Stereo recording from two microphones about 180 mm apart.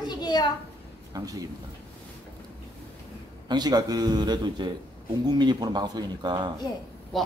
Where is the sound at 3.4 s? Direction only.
25° right (ahead or behind).